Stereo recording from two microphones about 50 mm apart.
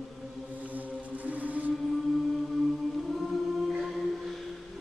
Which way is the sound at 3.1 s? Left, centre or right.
Centre.